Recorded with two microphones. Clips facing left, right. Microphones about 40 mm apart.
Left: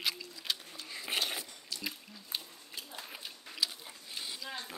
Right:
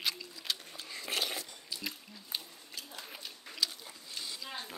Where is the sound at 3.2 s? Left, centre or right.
Centre.